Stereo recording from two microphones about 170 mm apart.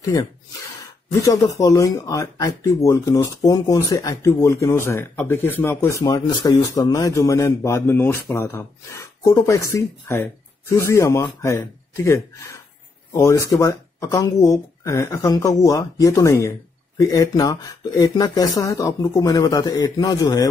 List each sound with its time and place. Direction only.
0.0 s speech: 20° left (ahead or behind)